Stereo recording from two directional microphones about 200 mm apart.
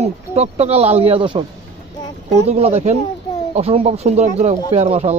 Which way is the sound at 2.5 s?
30° right (ahead or behind).